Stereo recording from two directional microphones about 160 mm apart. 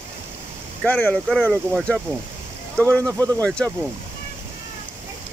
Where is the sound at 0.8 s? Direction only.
10° left (ahead or behind).